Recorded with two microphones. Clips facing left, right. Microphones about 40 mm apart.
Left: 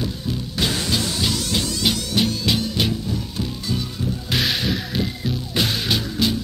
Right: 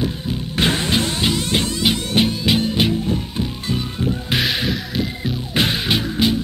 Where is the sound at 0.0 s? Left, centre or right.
Right.